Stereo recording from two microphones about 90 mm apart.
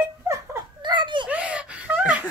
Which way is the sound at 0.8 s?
60° right (ahead or behind).